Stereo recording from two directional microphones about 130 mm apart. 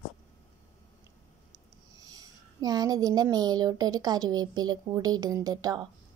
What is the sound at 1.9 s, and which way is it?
Speech, 30° right (ahead or behind).